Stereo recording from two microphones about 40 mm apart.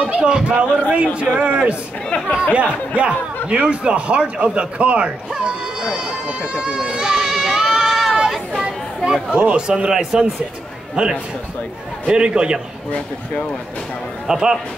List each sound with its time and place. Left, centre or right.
0.0 s a man's voice: right
5.3 s a sound: centre
8.3 s chatter: centre
9.3 s a man's voice: right
14.2 s speech: centre